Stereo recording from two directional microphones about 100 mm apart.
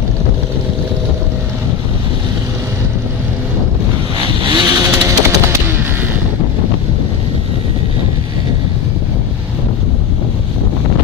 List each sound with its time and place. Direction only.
4.5 s vehicle: 45° right (ahead or behind)